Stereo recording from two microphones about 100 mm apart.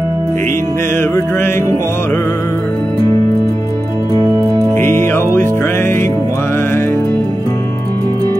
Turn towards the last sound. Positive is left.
turn(degrees=20)  # may be behind; listen again after turning